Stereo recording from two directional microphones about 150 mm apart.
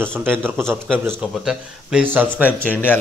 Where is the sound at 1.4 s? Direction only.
10° right (ahead or behind).